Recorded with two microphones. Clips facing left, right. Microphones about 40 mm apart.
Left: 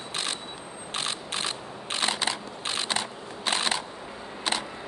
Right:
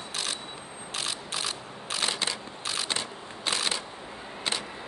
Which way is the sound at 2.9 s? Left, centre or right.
Left.